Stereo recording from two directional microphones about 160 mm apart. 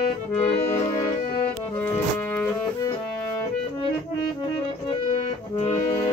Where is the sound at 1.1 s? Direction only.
40° left (ahead or behind).